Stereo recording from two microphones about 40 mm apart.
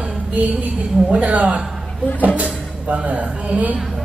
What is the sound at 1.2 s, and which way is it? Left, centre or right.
Speech, right.